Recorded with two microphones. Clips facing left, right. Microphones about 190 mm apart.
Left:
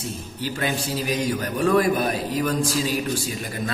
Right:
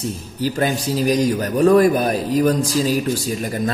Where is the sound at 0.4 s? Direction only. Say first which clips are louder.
Right 6 dB; 40° right (ahead or behind).